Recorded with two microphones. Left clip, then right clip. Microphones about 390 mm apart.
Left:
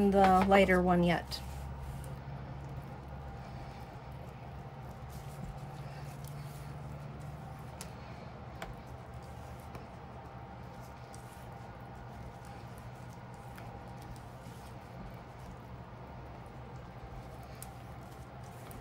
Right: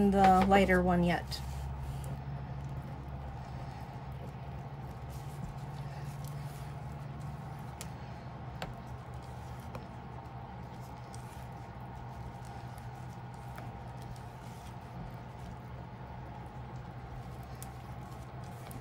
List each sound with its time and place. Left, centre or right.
0.1 s speech: centre